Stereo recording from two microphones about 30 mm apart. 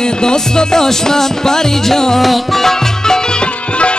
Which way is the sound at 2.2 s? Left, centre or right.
Centre.